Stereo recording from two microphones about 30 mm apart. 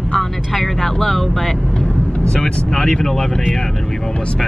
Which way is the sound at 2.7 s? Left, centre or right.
Centre.